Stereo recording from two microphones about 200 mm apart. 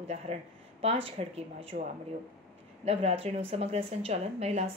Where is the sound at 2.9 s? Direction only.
30° right (ahead or behind).